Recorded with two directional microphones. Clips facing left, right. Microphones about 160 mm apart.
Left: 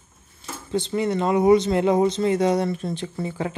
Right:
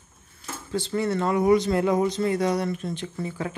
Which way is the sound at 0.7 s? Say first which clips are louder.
Left 2 dB; 20° left (ahead or behind).